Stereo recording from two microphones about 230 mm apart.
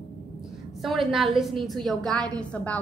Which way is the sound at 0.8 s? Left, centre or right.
Centre.